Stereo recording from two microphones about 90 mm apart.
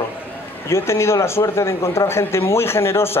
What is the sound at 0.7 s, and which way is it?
Speech, 30° left (ahead or behind).